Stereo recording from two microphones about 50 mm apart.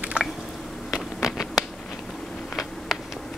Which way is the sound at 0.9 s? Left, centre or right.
Centre.